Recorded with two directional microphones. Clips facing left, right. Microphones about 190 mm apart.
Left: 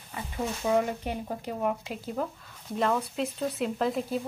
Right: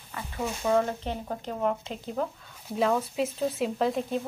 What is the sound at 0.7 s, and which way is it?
A woman's voice, 10° left (ahead or behind).